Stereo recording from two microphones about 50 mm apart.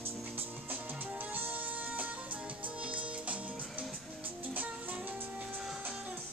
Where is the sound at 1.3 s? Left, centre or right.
Right.